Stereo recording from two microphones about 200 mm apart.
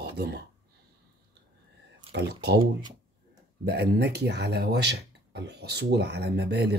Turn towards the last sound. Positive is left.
turn(degrees=-55)  # may be behind; listen again after turning